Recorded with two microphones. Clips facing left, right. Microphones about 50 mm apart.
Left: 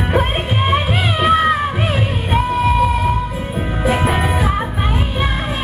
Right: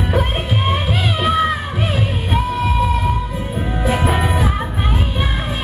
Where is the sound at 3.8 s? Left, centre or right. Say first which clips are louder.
Left 1 dB; centre.